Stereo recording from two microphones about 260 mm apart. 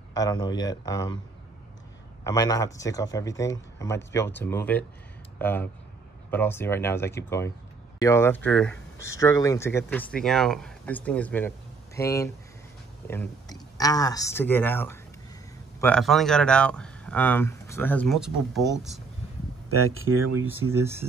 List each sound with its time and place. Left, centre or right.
0.1 s speech: centre
2.2 s speech: centre
19.7 s speech: right
20.4 s speech: centre